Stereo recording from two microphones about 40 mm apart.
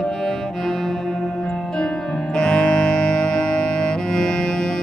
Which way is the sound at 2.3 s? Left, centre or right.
Left.